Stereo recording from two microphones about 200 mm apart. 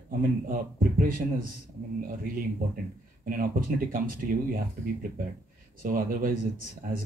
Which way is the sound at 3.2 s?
45° right (ahead or behind).